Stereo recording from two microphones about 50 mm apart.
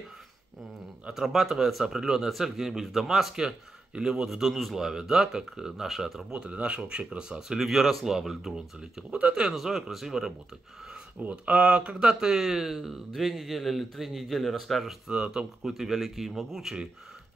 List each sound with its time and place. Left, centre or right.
1.1 s speech: centre
6.3 s speech: right
11.1 s speech: right; by 15.0 s centre
15.0 s speech: centre
15.7 s speech: centre